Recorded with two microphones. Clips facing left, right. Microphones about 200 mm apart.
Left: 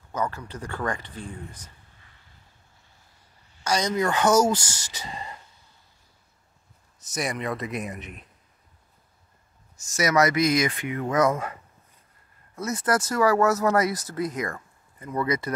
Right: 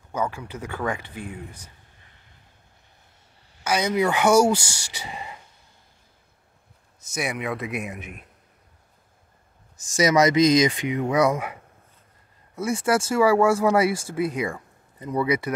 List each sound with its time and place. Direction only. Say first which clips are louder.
0.1 s speech: right 2 dB; 10° right (ahead or behind)
3.6 s speech: right 2 dB; 5° right (ahead or behind)
7.2 s speech: right 1 dB; 5° right (ahead or behind)
9.9 s speech: right 4 dB; 15° right (ahead or behind)
12.5 s speech: right 3 dB; 10° right (ahead or behind)